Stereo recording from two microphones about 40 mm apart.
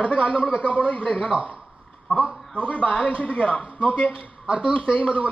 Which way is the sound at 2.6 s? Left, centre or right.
Left.